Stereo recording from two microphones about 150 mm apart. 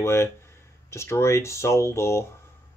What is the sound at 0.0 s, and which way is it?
Speech, 15° left (ahead or behind).